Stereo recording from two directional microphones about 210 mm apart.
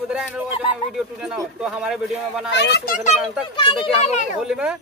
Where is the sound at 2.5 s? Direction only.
55° left (ahead or behind); by 3.2 s 40° left (ahead or behind).